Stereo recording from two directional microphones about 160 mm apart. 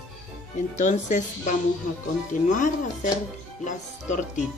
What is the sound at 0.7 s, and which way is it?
Speech, 50° left (ahead or behind).